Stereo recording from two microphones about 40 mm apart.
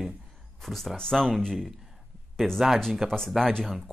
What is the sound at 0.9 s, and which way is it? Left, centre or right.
Speech, centre.